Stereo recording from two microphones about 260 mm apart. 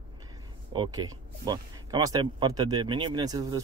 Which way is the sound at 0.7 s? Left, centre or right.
Centre.